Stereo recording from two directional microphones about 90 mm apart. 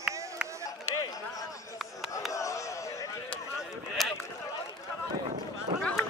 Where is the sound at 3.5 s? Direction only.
Centre (ahead or behind).